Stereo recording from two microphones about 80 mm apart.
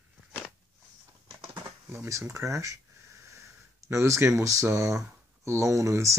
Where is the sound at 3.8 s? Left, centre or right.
Right.